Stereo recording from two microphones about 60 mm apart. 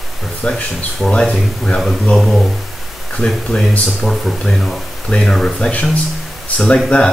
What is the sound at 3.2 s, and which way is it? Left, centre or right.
Speech, centre.